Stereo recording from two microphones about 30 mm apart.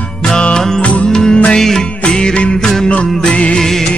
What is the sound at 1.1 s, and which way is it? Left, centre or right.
Music, centre.